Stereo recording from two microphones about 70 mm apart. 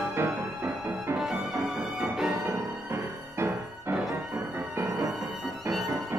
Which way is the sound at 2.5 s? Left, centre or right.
Right.